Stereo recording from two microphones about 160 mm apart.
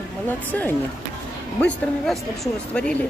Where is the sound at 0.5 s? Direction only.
10° left (ahead or behind).